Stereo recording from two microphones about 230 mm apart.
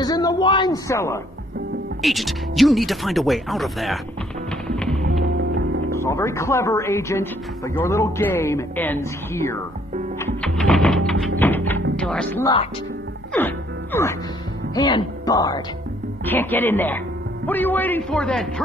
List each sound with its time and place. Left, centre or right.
0.0 s a sound: centre
2.0 s speech: centre
4.6 s music: centre
5.9 s speech: centre
10.1 s music: centre
12.0 s speech: centre
13.3 s music: centre
14.8 s speech: centre